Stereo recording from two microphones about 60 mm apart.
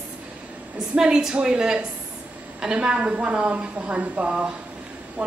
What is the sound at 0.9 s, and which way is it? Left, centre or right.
A woman's voice, centre.